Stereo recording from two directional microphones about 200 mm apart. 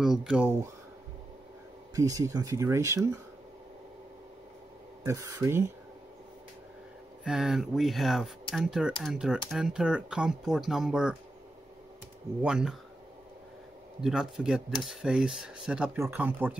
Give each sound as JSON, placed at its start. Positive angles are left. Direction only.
{"t": 0.0, "sound": "speech", "side_deg": 0}
{"t": 2.0, "sound": "speech", "side_deg": -15}
{"t": 5.0, "sound": "speech", "side_deg": -15}
{"t": 7.2, "sound": "speech", "side_deg": 0}
{"t": 12.4, "sound": "speech", "side_deg": -5}
{"t": 14.0, "sound": "speech", "side_deg": -5}